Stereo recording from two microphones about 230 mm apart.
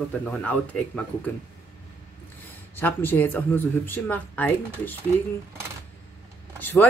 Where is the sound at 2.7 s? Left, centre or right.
Centre.